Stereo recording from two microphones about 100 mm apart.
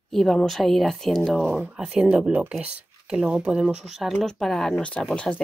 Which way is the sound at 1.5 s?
15° right (ahead or behind).